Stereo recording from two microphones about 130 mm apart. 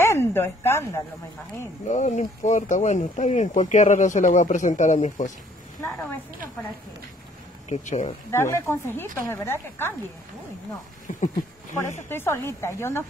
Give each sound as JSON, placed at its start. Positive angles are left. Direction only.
{"t": 0.0, "sound": "speech", "side_deg": 20}
{"t": 1.9, "sound": "speech", "side_deg": 65}
{"t": 5.8, "sound": "speech", "side_deg": 20}
{"t": 7.7, "sound": "speech", "side_deg": 65}
{"t": 8.3, "sound": "speech", "side_deg": 20}
{"t": 11.1, "sound": "speech", "side_deg": 70}
{"t": 12.1, "sound": "speech", "side_deg": 20}